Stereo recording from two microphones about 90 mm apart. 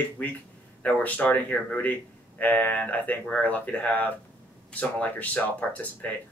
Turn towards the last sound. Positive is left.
turn(degrees=15)  # may be behind; listen again after turning